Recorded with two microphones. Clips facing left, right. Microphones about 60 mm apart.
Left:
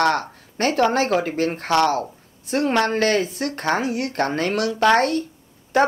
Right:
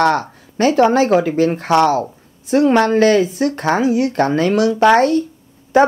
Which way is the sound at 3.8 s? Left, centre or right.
Left.